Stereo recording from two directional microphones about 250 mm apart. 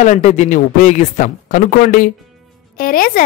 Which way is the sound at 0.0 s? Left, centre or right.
Left.